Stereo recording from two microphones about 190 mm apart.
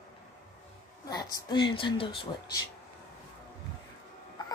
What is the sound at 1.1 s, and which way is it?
A woman's voice, 20° left (ahead or behind).